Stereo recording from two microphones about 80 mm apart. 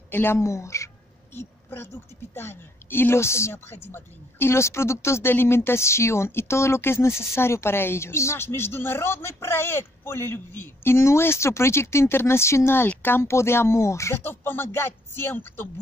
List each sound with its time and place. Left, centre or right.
0.1 s a woman's voice: left
1.3 s a sound: left
2.3 s a woman's voice: left